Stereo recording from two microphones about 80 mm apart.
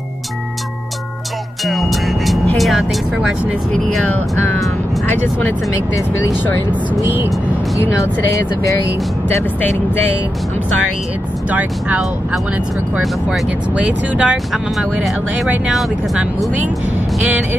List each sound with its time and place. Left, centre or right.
1.7 s music: centre
2.5 s speech: centre
5.9 s speech: left
8.0 s speech: left
13.7 s speech: centre